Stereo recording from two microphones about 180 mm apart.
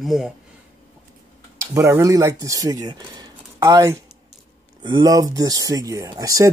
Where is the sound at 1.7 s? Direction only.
15° right (ahead or behind).